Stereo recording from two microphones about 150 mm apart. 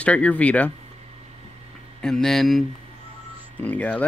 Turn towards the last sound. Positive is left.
turn(degrees=10)  # may be behind; listen again after turning